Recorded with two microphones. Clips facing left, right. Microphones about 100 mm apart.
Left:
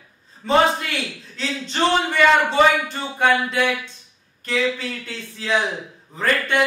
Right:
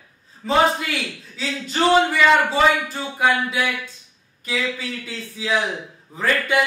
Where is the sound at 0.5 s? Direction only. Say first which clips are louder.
Left 1 dB; centre (ahead or behind).